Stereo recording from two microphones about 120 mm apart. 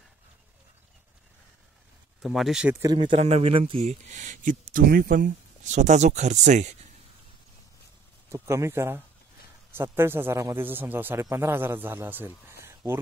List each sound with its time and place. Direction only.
2.2 s speech: centre (ahead or behind)
2.9 s a man's voice: 45° right (ahead or behind)
3.2 s a man's voice: 55° right (ahead or behind)
3.9 s speech: 90° right
8.3 s a man's voice: 25° right (ahead or behind)